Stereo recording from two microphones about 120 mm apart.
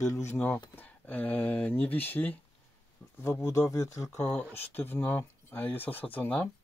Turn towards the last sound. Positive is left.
turn(degrees=10)  # may be behind; listen again after turning